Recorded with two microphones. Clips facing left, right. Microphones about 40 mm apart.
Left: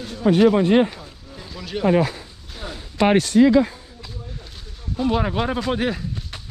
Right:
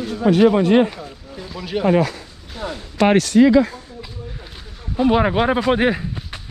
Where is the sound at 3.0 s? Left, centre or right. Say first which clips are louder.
Right 2 dB; right.